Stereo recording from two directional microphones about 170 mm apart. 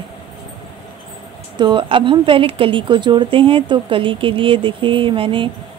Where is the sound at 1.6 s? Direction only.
30° right (ahead or behind).